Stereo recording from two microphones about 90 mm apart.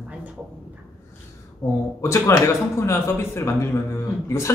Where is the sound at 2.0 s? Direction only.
30° left (ahead or behind).